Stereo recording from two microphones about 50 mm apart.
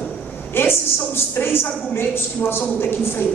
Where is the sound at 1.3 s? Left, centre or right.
Left.